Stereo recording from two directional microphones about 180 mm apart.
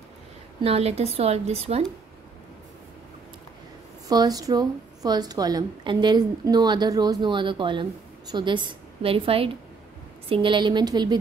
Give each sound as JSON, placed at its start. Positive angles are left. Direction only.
{"t": 0.6, "sound": "a woman's voice", "side_deg": -35}
{"t": 4.1, "sound": "a woman's voice", "side_deg": -20}